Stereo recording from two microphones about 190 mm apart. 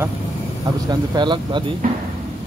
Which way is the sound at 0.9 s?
25° right (ahead or behind).